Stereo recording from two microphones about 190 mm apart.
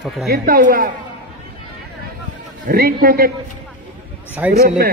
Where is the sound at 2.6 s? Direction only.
50° right (ahead or behind).